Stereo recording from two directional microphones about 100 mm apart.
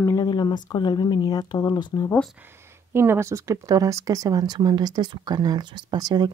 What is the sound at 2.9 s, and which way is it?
Speech, 25° right (ahead or behind).